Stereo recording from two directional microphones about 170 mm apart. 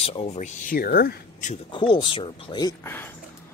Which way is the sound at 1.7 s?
30° left (ahead or behind).